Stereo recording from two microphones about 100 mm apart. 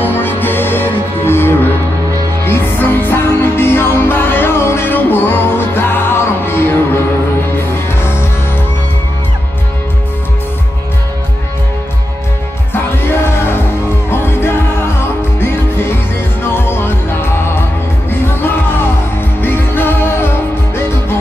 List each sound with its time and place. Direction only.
0.0 s music: 20° left (ahead or behind)
12.7 s music: 25° left (ahead or behind)
19.4 s music: 20° left (ahead or behind)